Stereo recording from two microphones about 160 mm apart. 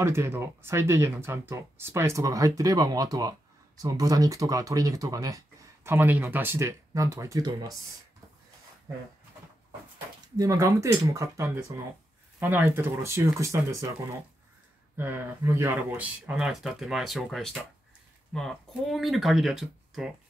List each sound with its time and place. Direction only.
0.0 s speech: 15° right (ahead or behind)
10.3 s speech: 20° right (ahead or behind)
15.0 s speech: 10° right (ahead or behind)